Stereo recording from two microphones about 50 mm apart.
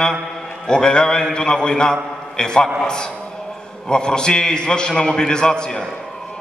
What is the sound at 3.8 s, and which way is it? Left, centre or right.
A man's voice, centre.